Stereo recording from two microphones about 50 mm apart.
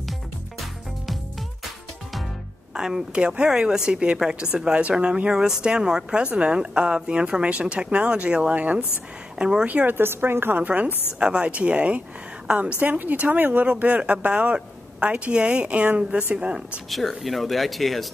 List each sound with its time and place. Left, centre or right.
2.7 s a woman's voice: centre
9.4 s a woman's voice: centre
9.8 s speech: right
10.6 s speech: right
12.8 s a woman's voice: right
17.2 s speech: centre